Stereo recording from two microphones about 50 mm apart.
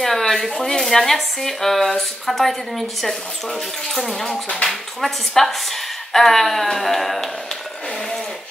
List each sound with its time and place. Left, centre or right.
0.0 s speech: centre
3.9 s speech: centre
4.3 s speech: left
4.6 s speech: centre